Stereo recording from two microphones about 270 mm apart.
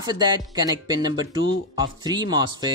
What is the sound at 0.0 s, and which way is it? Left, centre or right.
Speech, centre.